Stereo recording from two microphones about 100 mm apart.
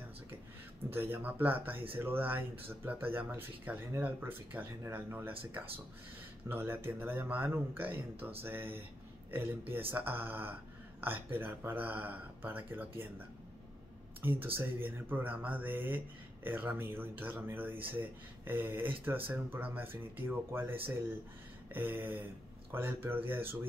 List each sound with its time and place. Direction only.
0.9 s speech: 20° right (ahead or behind)
14.2 s speech: 20° right (ahead or behind)
21.7 s speech: 20° right (ahead or behind)